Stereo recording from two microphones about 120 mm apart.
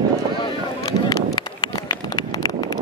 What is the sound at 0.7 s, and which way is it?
Run, 35° left (ahead or behind).